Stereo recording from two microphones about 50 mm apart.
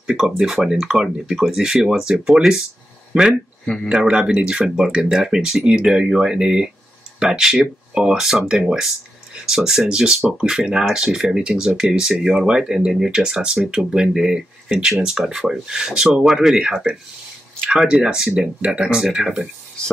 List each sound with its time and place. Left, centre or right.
0.0 s speech: centre
3.6 s speech: centre
4.1 s speech: centre